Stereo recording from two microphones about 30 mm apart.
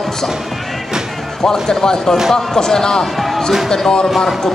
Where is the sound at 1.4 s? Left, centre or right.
Centre.